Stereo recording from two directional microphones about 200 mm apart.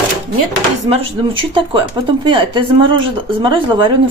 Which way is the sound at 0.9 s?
25° right (ahead or behind).